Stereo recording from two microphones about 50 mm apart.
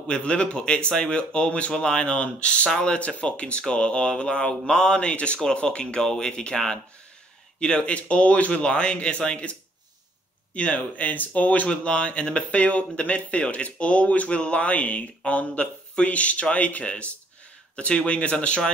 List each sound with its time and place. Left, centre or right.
0.0 s speech: left